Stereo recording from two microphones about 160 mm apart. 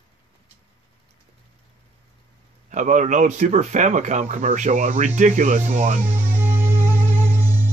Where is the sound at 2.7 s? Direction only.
50° right (ahead or behind).